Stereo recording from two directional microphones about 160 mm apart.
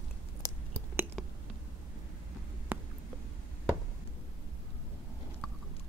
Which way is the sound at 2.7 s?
10° right (ahead or behind).